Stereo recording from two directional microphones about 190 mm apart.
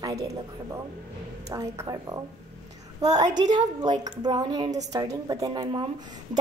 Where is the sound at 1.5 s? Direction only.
15° right (ahead or behind).